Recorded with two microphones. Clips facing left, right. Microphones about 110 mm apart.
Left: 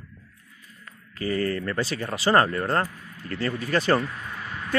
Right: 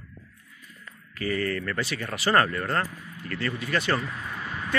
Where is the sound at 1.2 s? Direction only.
30° left (ahead or behind).